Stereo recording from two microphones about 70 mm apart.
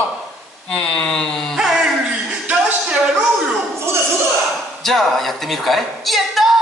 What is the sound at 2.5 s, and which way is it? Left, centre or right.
Speech, right.